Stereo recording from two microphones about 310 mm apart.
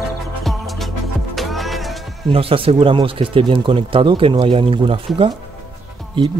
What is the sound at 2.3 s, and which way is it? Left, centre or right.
Speech, centre.